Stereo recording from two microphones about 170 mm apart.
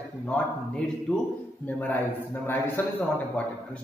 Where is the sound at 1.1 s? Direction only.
5° left (ahead or behind).